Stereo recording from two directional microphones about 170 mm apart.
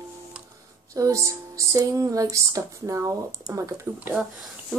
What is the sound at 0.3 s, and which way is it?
Music, 5° right (ahead or behind).